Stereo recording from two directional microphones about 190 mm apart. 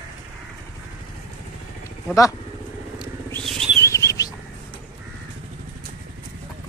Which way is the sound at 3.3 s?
Centre (ahead or behind).